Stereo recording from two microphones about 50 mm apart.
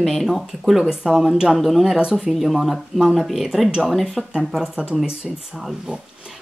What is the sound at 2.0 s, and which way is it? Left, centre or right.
Speech, centre.